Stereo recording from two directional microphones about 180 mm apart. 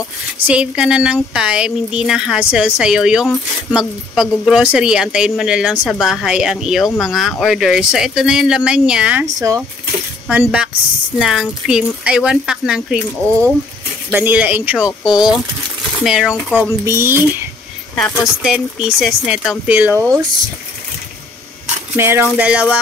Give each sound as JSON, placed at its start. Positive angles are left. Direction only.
{"t": 0.4, "sound": "speech", "side_deg": -5}
{"t": 9.2, "sound": "speech", "side_deg": -20}
{"t": 11.1, "sound": "speech", "side_deg": 0}
{"t": 14.1, "sound": "speech", "side_deg": -10}
{"t": 14.9, "sound": "speech", "side_deg": 25}
{"t": 16.0, "sound": "speech", "side_deg": -5}
{"t": 16.6, "sound": "speech", "side_deg": -15}
{"t": 17.9, "sound": "speech", "side_deg": 0}
{"t": 19.9, "sound": "speech", "side_deg": 10}
{"t": 21.9, "sound": "speech", "side_deg": -15}